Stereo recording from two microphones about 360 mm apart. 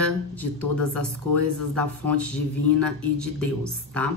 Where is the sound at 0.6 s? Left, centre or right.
Right.